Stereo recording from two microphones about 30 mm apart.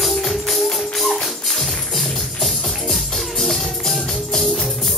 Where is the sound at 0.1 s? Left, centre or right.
Centre.